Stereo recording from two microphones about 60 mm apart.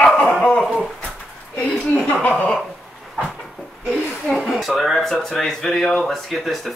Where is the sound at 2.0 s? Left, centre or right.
Left.